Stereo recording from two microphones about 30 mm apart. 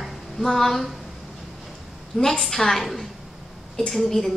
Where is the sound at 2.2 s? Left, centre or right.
Centre.